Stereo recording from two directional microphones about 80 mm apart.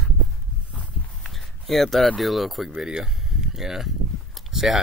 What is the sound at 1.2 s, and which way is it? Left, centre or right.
Speech, centre.